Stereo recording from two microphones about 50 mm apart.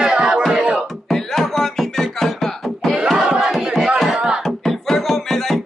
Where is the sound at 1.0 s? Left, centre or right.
Centre.